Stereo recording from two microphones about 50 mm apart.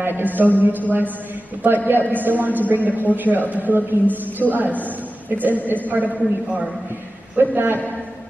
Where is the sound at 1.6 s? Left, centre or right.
Right.